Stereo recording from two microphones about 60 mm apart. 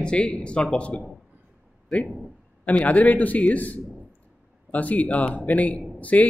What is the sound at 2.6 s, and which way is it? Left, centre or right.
Speech, left.